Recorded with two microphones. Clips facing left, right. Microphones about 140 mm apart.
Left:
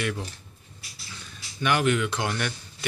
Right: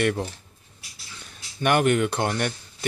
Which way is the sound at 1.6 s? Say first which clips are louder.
Right 3 dB; 50° right (ahead or behind).